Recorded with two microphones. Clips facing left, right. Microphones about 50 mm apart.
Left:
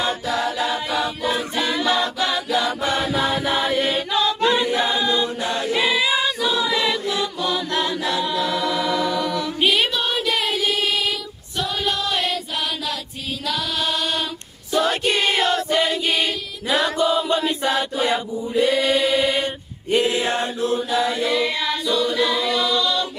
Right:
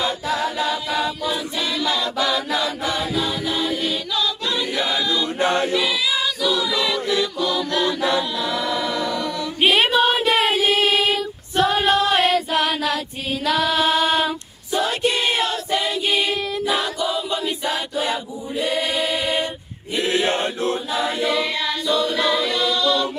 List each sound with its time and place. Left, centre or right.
0.7 s choir: left
2.2 s chant: left
5.4 s choir: right
5.7 s choir: left
8.5 s music: centre
9.6 s a sound: right
13.7 s a sound: right
14.9 s a sound: left
15.3 s choir: left
16.6 s chant: left
18.8 s choir: left
20.0 s chant: right
22.1 s a capella: centre